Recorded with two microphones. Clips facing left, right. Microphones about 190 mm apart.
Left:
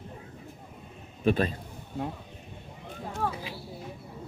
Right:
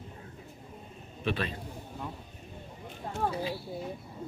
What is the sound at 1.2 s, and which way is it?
Speech, 45° left (ahead or behind).